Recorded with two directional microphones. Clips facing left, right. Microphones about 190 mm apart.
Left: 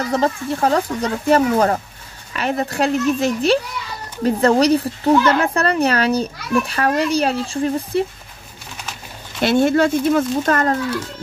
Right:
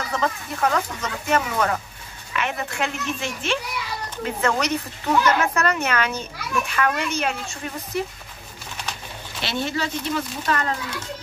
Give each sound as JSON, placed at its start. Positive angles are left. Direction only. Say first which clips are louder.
{"t": 0.1, "sound": "speech", "louder": "left 6 dB", "side_deg": 30}
{"t": 9.4, "sound": "speech", "louder": "left 12 dB", "side_deg": 50}